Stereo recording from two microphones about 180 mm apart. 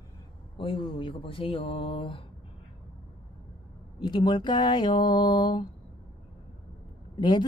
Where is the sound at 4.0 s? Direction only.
25° left (ahead or behind).